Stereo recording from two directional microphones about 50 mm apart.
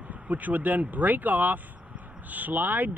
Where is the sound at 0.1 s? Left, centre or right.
Right.